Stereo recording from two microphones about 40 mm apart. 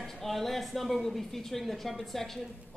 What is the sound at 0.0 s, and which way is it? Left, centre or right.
Speech, centre.